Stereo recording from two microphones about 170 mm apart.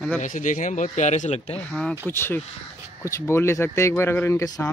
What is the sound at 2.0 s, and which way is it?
Speech, 10° left (ahead or behind).